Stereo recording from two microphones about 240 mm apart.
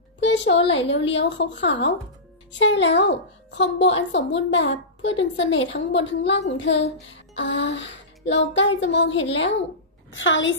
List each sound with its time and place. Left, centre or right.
0.2 s a sound: left
0.7 s a child's voice: left
10.1 s a child's voice: left